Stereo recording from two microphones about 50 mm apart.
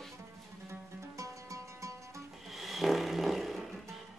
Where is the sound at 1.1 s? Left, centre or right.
Right.